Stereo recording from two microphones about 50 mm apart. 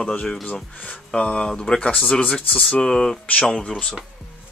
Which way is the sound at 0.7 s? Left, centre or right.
Left.